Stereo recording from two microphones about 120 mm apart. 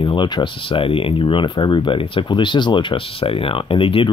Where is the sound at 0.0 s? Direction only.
40° left (ahead or behind).